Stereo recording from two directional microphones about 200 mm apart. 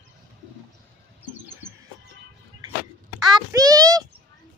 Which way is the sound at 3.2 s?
20° right (ahead or behind).